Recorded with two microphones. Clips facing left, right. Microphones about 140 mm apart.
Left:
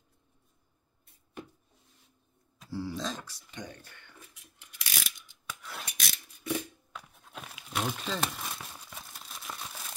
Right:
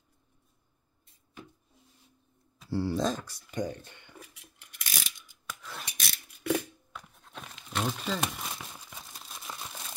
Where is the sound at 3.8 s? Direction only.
20° right (ahead or behind).